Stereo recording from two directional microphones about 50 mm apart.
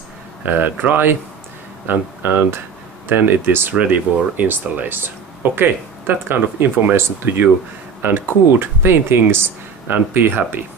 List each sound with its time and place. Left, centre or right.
0.5 s speech: right